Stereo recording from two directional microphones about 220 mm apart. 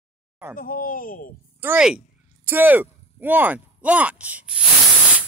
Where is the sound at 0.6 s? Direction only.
40° left (ahead or behind).